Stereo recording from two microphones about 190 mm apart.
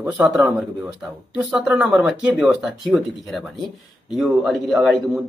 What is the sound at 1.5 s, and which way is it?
Speech, 5° right (ahead or behind).